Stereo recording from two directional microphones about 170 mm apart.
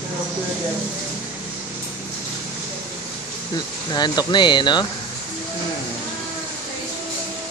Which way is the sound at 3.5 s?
25° left (ahead or behind).